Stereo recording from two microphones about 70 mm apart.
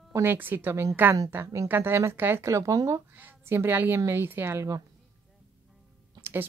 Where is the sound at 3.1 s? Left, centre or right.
Right.